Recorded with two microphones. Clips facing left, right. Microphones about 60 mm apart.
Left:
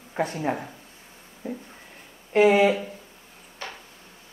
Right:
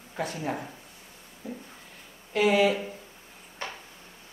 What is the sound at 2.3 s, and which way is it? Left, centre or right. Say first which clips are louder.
Speech: left 5 dB; left.